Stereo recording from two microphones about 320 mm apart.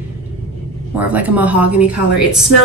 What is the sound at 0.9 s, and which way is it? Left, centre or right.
A woman's voice, centre.